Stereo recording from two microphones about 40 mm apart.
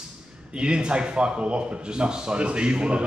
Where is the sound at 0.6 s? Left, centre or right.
Right.